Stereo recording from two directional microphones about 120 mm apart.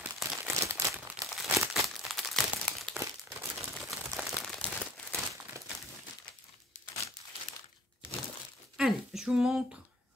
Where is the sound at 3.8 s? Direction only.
Centre (ahead or behind).